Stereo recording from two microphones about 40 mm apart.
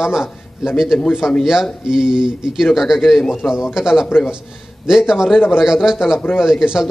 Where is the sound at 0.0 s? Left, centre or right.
Centre.